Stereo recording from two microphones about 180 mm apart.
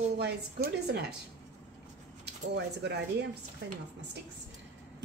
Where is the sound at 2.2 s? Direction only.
70° right (ahead or behind).